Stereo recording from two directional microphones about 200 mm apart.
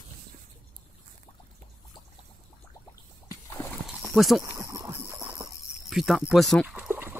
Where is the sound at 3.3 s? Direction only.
15° left (ahead or behind).